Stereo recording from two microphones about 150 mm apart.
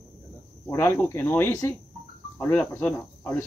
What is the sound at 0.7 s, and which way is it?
Speech, 15° left (ahead or behind).